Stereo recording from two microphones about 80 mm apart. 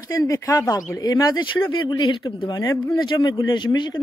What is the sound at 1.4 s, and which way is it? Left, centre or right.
Speech, left.